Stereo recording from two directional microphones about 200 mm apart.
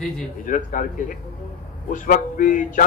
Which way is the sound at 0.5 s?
40° left (ahead or behind).